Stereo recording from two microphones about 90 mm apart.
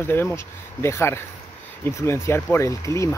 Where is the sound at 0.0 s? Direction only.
25° left (ahead or behind).